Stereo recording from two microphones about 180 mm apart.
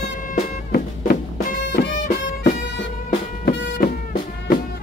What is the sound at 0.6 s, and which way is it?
Music, 55° left (ahead or behind).